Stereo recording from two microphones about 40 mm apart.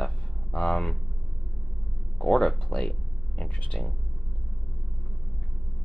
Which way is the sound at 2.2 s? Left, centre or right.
Centre.